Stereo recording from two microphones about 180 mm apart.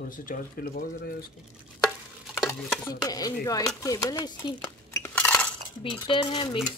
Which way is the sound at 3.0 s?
20° left (ahead or behind).